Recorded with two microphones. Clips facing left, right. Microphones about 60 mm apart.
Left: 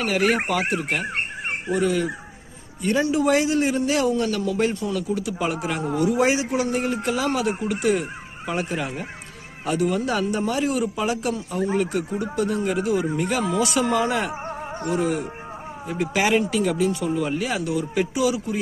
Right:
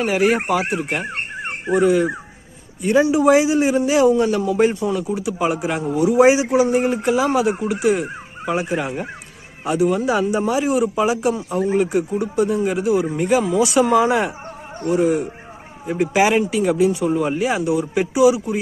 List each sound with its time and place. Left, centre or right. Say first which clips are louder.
0.0 s a man's voice: right 4 dB; centre